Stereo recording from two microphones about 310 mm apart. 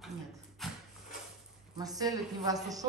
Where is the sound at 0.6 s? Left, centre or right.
Centre.